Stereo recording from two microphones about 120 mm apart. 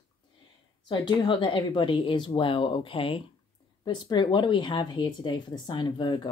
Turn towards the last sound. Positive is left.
turn(degrees=40)  # may be behind; listen again after turning